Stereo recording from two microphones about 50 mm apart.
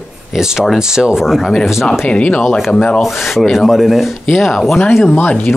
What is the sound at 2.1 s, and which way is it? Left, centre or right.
Rub, left.